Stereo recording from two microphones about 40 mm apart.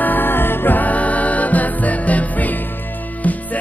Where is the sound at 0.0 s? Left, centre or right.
Left.